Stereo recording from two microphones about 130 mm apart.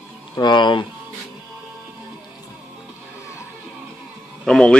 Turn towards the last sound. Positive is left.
turn(degrees=5)  # may be behind; listen again after turning